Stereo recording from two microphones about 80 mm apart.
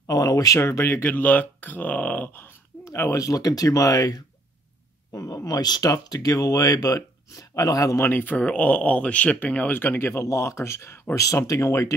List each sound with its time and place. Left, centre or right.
0.0 s speech: left
0.6 s speech: left
2.9 s speech: left
8.0 s speech: left
10.2 s speech: left